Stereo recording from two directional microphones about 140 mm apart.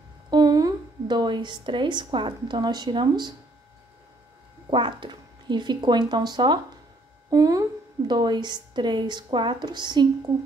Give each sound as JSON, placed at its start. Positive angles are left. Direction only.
{"t": 0.3, "sound": "a woman's voice", "side_deg": -30}
{"t": 4.6, "sound": "speech", "side_deg": -35}